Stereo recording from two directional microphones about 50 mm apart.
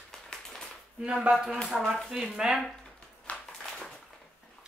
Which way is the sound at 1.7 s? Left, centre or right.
Centre.